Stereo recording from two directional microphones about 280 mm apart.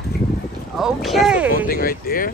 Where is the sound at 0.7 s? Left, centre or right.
Centre.